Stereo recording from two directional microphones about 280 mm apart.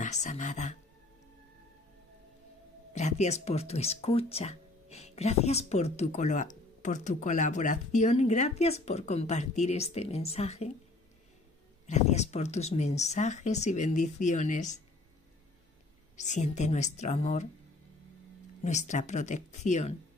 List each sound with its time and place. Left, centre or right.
0.0 s speech: left
2.9 s speech: left
11.8 s speech: left
16.2 s speech: left
18.6 s speech: left